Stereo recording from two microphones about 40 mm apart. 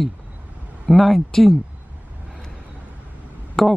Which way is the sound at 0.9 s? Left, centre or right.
Centre.